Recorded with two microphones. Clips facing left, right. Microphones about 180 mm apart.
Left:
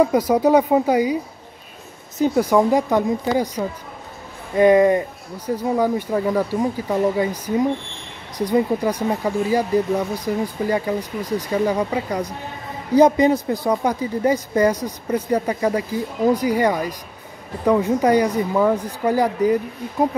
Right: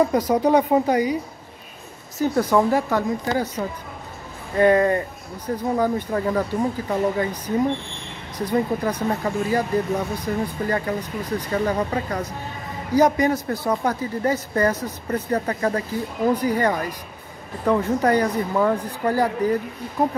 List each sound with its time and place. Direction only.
0.0 s speech: 10° left (ahead or behind)
2.1 s speech: 15° left (ahead or behind)